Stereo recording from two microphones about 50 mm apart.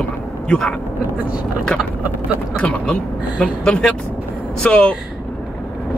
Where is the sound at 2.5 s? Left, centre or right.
Left.